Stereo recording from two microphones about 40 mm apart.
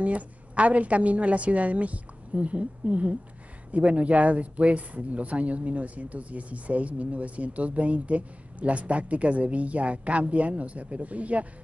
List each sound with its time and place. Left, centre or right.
0.0 s speech: right